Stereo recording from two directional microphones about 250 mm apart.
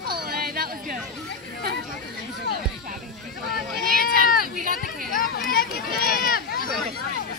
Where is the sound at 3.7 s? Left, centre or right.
Left.